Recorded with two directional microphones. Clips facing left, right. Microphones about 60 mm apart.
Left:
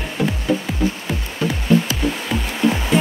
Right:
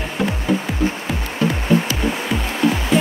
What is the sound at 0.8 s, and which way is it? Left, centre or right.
Music, right.